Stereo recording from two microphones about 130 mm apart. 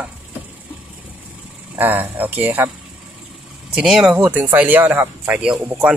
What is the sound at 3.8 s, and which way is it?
Speech, 10° right (ahead or behind).